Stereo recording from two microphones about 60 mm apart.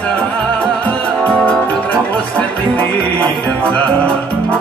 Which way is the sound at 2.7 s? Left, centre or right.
Left.